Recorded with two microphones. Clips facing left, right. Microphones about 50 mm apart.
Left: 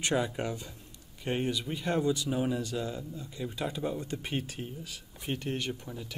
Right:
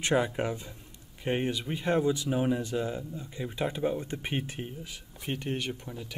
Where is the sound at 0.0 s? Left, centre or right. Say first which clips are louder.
Right 3 dB; centre.